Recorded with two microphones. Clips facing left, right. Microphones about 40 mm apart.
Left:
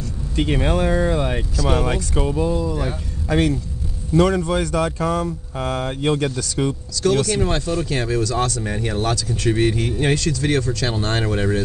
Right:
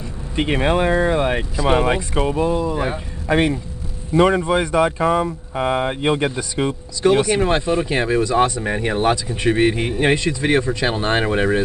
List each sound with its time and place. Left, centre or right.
0.4 s speech: right